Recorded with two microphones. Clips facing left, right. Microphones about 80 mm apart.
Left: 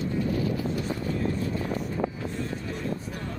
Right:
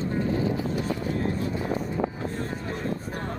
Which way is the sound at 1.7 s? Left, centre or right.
Right.